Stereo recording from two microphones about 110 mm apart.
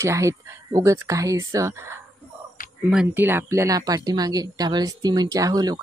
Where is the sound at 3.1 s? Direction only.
20° right (ahead or behind).